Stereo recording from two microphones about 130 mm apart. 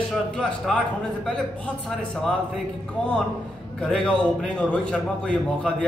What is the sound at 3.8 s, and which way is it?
A man's voice, 5° left (ahead or behind).